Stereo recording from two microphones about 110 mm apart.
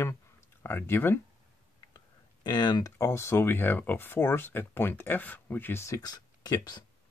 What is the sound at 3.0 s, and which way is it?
Speech, 25° left (ahead or behind).